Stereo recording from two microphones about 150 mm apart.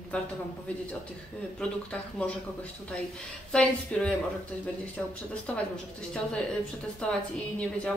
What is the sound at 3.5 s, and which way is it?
Speech, 5° left (ahead or behind).